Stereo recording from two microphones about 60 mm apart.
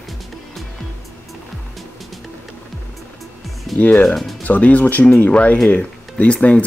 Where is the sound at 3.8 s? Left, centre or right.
Left.